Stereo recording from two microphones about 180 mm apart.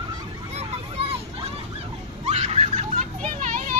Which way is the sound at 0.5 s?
35° right (ahead or behind).